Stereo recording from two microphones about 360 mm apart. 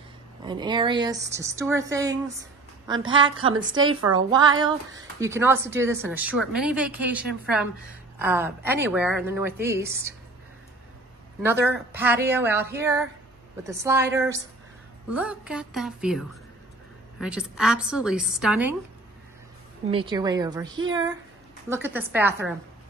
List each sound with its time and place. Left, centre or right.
0.5 s speech: centre
3.7 s a woman's voice: right
4.3 s a woman's voice: centre
11.4 s a woman's voice: centre
19.9 s a woman's voice: centre